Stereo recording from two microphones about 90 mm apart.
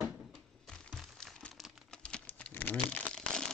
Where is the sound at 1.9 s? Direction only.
10° left (ahead or behind).